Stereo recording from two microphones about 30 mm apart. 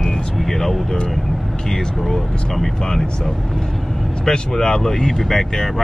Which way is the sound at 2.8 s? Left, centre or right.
Centre.